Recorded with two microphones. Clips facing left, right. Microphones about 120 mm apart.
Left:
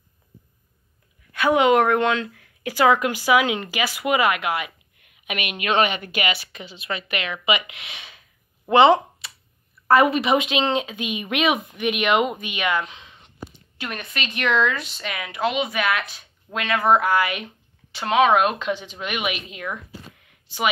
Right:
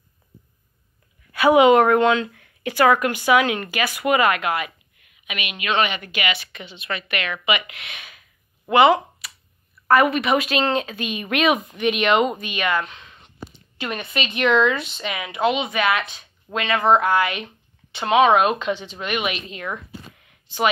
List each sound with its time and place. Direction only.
1.3 s speech: 5° right (ahead or behind); by 4.7 s 10° left (ahead or behind)
5.2 s a woman's voice: 50° left (ahead or behind)
6.7 s speech: 30° left (ahead or behind)
9.2 s a sound: 25° left (ahead or behind)
9.8 s speech: 25° left (ahead or behind)
13.7 s speech: centre (ahead or behind)